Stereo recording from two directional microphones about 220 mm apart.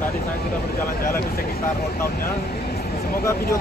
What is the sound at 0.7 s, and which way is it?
Speech, 40° left (ahead or behind).